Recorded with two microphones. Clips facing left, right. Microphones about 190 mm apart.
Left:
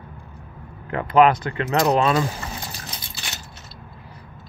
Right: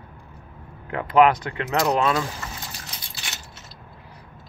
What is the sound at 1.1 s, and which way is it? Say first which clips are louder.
Speech: left 1 dB; 10° right (ahead or behind).